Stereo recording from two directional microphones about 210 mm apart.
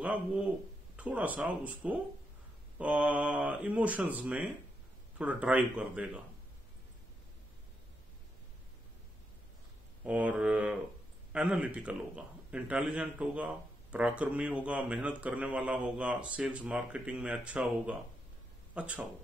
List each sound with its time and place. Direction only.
0.0 s speech: 5° right (ahead or behind)
10.0 s a man's voice: 5° right (ahead or behind)